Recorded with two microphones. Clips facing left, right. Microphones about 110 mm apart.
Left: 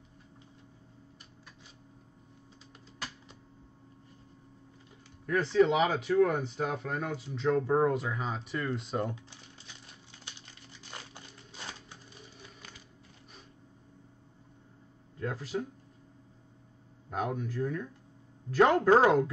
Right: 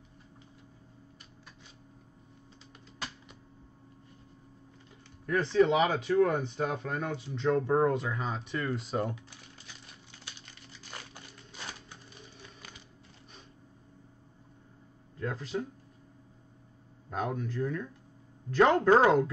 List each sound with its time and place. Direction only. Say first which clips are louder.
5.2 s speech: even; 5° left (ahead or behind)
9.1 s crumpling: even; 25° left (ahead or behind)
12.4 s music: even; 5° left (ahead or behind)
15.1 s a sound: even; 10° left (ahead or behind)
17.1 s speech: even; 10° left (ahead or behind)